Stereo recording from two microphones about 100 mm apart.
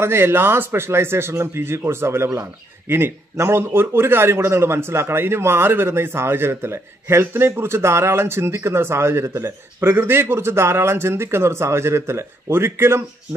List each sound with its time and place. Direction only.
0.0 s a man's voice: 25° right (ahead or behind)